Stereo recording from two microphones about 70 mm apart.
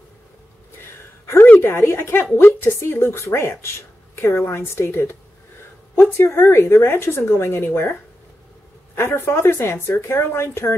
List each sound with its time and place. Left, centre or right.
1.2 s a sound: left
1.6 s speech: left
8.9 s speech: left